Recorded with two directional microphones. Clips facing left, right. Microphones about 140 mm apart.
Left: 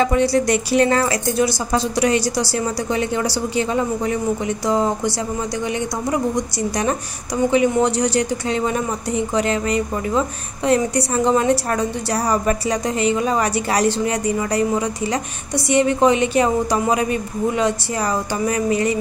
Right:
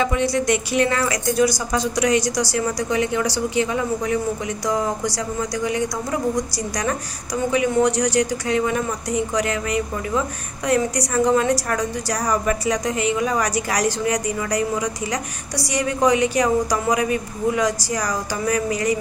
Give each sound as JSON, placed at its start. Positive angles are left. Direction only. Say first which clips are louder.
{"t": 0.0, "sound": "a woman's voice", "louder": "left 4 dB", "side_deg": 35}